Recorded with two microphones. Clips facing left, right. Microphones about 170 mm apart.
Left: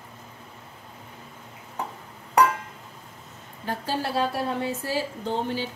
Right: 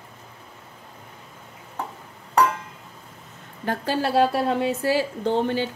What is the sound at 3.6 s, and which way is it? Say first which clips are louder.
A woman's voice: right 4 dB; 65° right (ahead or behind).